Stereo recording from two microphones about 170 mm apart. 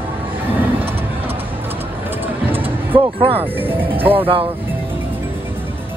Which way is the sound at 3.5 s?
10° right (ahead or behind).